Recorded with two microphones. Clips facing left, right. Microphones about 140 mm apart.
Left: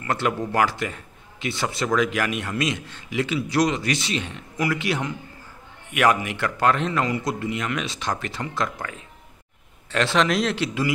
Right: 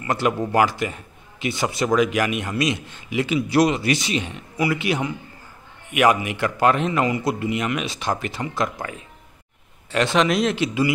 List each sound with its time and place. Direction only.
0.0 s a man's voice: 10° right (ahead or behind)
8.6 s speech: 20° right (ahead or behind)
9.8 s speech: 5° right (ahead or behind)